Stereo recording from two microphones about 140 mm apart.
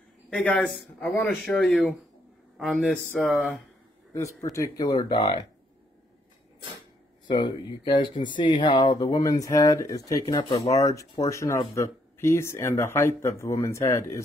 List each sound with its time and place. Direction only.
0.3 s a man's voice: 10° left (ahead or behind)
4.1 s speech: 20° left (ahead or behind)
7.2 s speech: 35° left (ahead or behind)